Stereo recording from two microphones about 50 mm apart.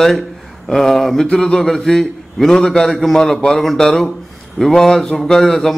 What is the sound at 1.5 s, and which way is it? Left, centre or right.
A man's voice, centre.